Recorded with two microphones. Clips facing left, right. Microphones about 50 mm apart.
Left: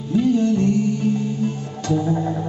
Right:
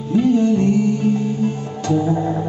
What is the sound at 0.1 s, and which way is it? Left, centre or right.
Music, centre.